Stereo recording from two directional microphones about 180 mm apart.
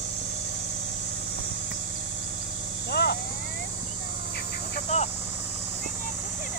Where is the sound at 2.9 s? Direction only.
65° left (ahead or behind).